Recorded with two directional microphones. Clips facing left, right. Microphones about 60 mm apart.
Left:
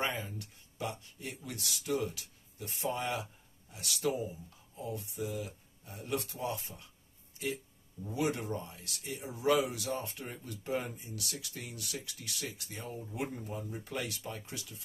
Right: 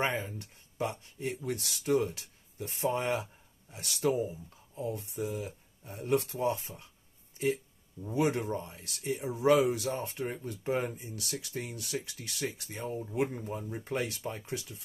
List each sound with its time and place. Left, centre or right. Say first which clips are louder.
0.0 s speech: right 4 dB; right
8.1 s speech: right 4 dB; right